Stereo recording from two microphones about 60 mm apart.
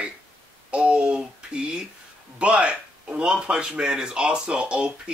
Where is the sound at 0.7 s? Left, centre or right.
Centre.